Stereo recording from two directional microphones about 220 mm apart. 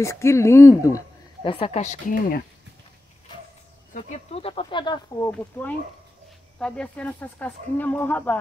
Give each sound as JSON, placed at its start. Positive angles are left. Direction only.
{"t": 0.0, "sound": "speech", "side_deg": 10}
{"t": 3.9, "sound": "speech", "side_deg": 30}
{"t": 5.3, "sound": "speech", "side_deg": 5}